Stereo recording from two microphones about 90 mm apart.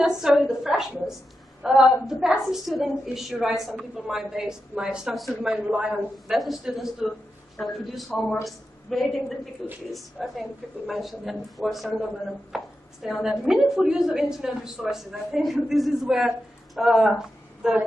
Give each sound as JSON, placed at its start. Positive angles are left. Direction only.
{"t": 0.0, "sound": "a woman's voice", "side_deg": -5}
{"t": 5.7, "sound": "a man's voice", "side_deg": -20}
{"t": 6.2, "sound": "a woman's voice", "side_deg": 0}